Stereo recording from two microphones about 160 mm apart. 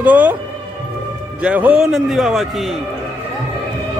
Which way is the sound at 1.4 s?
10° right (ahead or behind).